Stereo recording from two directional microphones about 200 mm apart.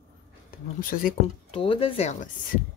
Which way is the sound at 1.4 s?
25° left (ahead or behind).